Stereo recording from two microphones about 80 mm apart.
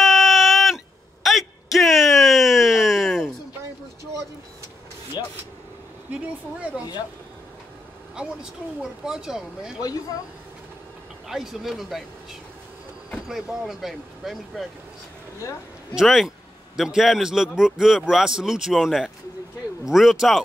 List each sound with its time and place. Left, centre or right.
0.0 s a sound: centre
5.2 s vehicle: left
9.0 s speech: centre
11.2 s a man's voice: centre
13.1 s a man's voice: centre
15.9 s a man's voice: centre